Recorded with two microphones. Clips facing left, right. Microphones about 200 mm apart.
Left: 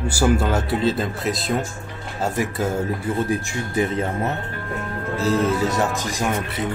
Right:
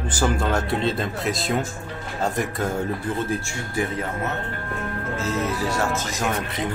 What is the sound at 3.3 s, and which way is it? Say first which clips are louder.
Speech: left 3 dB; 15° left (ahead or behind).